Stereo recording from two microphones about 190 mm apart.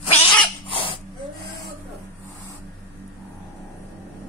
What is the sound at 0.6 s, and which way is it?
Dog, 30° left (ahead or behind).